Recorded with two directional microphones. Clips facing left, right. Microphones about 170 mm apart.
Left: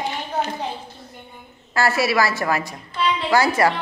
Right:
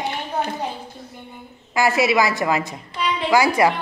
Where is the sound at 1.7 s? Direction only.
15° right (ahead or behind).